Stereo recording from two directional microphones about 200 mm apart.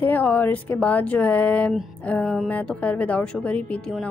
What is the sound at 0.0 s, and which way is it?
Speech, 10° left (ahead or behind).